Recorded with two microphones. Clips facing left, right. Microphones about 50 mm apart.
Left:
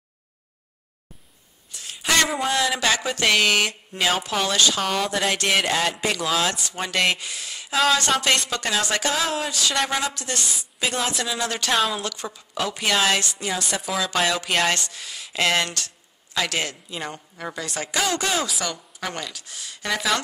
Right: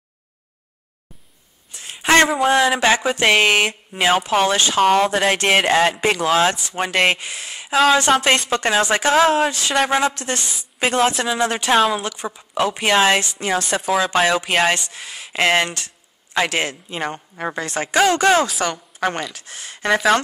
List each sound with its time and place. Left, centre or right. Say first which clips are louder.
1.7 s a woman's voice: right 7 dB; right
14.3 s a woman's voice: right 5 dB; centre; by 20.0 s right